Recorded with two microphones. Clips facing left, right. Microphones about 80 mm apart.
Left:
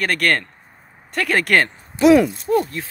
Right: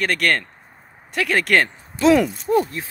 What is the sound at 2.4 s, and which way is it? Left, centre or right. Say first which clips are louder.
Speech: even; right.